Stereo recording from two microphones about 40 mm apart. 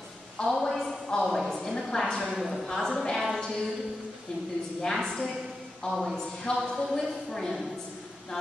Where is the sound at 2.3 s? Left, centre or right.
Centre.